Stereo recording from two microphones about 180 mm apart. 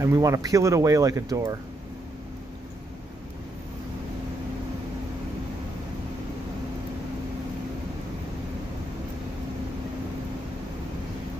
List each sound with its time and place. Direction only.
0.0 s speech: 15° right (ahead or behind)